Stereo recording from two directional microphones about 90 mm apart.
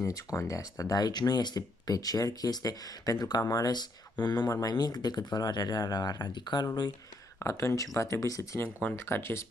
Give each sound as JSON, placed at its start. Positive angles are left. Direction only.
{"t": 0.0, "sound": "speech", "side_deg": 35}
{"t": 7.3, "sound": "speech", "side_deg": 30}